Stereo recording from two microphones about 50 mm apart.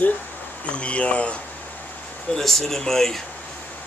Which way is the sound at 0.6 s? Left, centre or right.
Left.